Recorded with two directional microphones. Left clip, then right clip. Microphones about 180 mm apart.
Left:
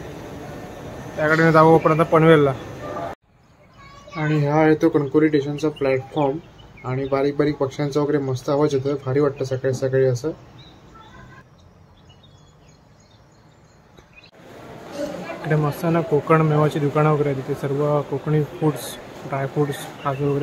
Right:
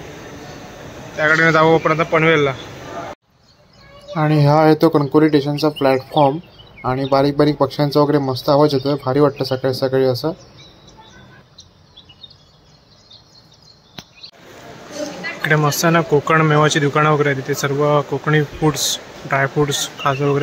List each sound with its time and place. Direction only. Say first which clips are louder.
1.1 s a man's voice: right 2 dB; centre (ahead or behind)
4.1 s speech: right 6 dB; 25° right (ahead or behind)
15.4 s speech: right 7 dB; 10° right (ahead or behind)